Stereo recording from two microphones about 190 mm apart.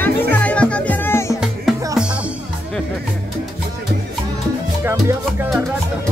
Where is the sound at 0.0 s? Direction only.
10° left (ahead or behind).